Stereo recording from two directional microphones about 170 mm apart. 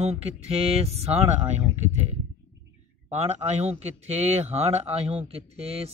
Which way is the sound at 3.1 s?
40° right (ahead or behind).